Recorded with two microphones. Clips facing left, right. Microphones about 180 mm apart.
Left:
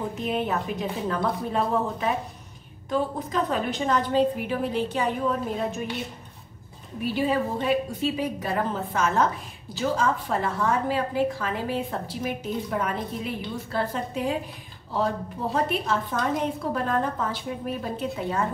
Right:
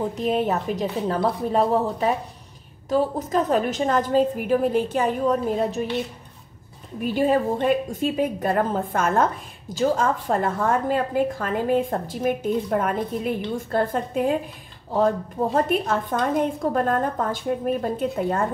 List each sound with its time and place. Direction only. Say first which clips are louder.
0.1 s a woman's voice: right 4 dB; 40° right (ahead or behind)
7.0 s a woman's voice: right 4 dB; 45° right (ahead or behind)
15.5 s a woman's voice: right 3 dB; 50° right (ahead or behind)